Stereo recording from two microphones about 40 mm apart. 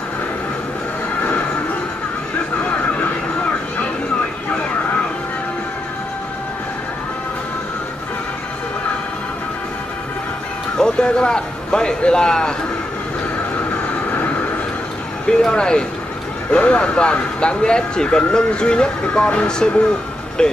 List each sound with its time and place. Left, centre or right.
10.8 s a man's voice: left
15.2 s speech: centre